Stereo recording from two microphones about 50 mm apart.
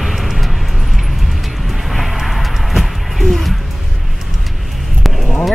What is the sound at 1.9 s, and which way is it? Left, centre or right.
Music, centre.